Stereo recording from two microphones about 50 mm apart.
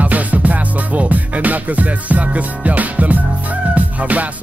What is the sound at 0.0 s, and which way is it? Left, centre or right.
Music, right.